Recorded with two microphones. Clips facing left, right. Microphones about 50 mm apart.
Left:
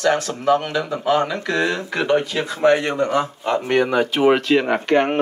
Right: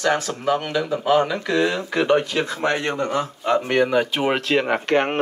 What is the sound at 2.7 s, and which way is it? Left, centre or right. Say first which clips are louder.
Speech: left 5 dB; left.